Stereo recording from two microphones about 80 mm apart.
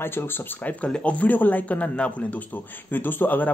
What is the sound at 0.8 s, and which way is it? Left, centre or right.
Speech, centre.